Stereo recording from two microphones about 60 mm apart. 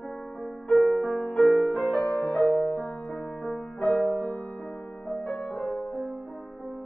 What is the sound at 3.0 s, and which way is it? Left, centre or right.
Music, centre.